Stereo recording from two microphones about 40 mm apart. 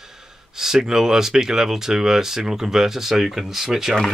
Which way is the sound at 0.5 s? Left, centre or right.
Centre.